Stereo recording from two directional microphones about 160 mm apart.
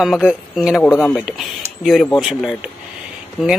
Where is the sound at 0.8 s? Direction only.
15° left (ahead or behind).